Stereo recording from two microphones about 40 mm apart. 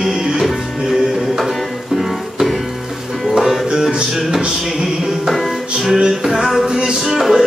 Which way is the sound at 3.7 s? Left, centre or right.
Centre.